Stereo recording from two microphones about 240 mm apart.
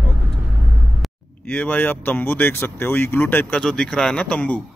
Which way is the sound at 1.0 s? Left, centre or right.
Centre.